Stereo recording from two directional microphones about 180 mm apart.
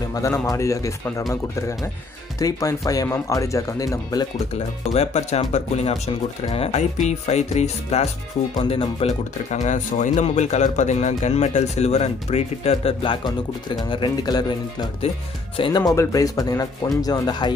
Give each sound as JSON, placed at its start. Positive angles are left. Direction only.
{"t": 0.1, "sound": "speech", "side_deg": 20}
{"t": 2.3, "sound": "speech", "side_deg": 20}
{"t": 4.6, "sound": "speech", "side_deg": 35}